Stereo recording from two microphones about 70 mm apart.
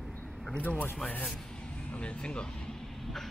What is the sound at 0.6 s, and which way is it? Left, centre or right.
A man's voice, left.